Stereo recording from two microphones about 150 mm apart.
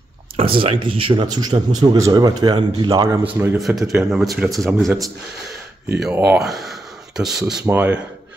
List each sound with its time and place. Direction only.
0.4 s a man's voice: 40° right (ahead or behind); by 3.2 s 25° right (ahead or behind)
3.5 s speech: centre (ahead or behind)
6.1 s speech: 15° right (ahead or behind)
6.4 s speech: centre (ahead or behind)